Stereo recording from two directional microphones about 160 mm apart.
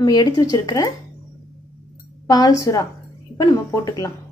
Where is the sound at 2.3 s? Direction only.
20° left (ahead or behind).